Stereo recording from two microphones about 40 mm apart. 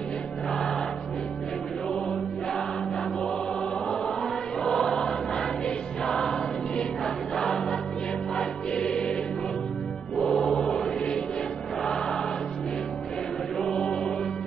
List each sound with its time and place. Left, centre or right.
4.7 s choir: centre
7.3 s choir: centre
8.4 s music: left
11.8 s choir: centre